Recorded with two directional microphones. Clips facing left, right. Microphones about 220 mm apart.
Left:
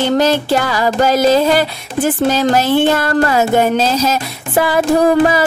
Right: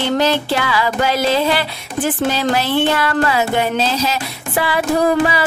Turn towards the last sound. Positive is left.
turn(degrees=45)  # may be behind; listen again after turning